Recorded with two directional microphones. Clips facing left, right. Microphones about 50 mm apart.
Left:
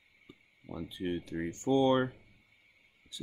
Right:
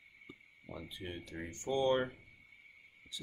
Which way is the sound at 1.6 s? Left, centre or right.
Left.